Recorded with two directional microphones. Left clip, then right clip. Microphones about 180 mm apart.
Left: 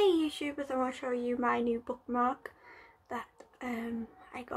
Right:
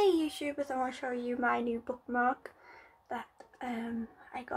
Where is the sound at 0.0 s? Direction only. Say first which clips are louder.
Even; centre (ahead or behind).